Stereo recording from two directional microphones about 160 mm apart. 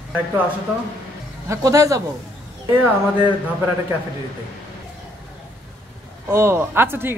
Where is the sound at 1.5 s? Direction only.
20° right (ahead or behind).